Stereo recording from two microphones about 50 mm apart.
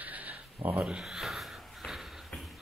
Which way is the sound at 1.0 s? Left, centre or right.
Centre.